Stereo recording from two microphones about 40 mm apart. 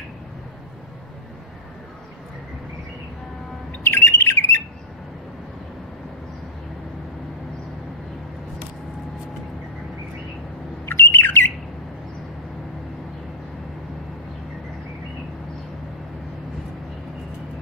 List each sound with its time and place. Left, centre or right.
3.8 s bird: left
10.9 s bird: left